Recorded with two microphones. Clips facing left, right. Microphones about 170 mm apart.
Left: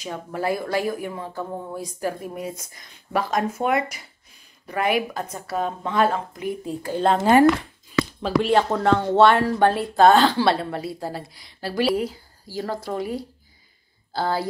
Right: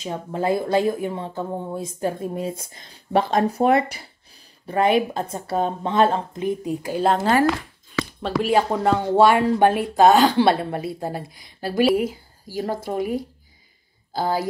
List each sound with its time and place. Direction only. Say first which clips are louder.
0.0 s speech: right 2 dB; 25° right (ahead or behind)
8.2 s speech: even; 5° right (ahead or behind)